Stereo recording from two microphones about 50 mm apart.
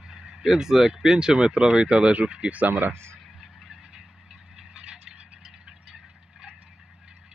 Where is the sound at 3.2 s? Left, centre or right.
Centre.